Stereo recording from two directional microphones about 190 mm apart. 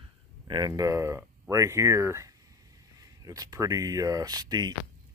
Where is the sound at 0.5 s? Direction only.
20° right (ahead or behind).